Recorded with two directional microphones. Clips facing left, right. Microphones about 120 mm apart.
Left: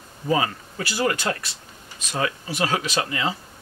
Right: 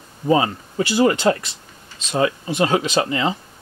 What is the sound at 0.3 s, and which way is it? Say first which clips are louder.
Speech: right 5 dB; 25° right (ahead or behind).